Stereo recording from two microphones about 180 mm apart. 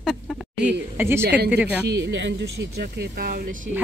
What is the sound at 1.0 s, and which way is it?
Speech, 15° right (ahead or behind).